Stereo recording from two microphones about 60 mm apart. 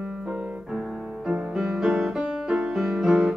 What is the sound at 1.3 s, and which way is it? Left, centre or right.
Music, centre.